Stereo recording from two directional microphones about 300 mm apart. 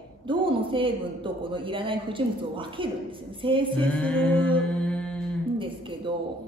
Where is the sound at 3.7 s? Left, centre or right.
Centre.